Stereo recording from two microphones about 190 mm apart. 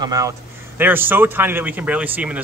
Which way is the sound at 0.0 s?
20° right (ahead or behind).